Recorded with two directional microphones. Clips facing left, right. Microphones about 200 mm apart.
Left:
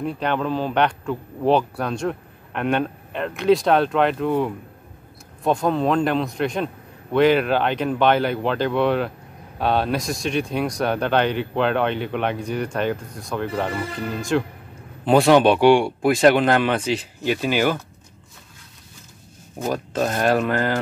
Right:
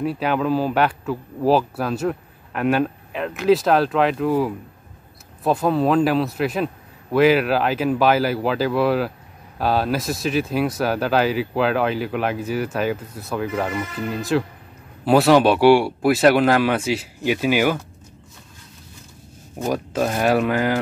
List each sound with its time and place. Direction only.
0.0 s a man's voice: 5° right (ahead or behind)
19.6 s speech: 10° right (ahead or behind)